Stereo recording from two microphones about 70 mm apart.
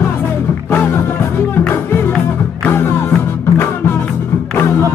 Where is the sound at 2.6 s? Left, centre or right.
Left.